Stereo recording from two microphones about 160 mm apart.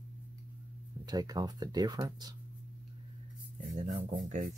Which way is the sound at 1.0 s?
25° right (ahead or behind).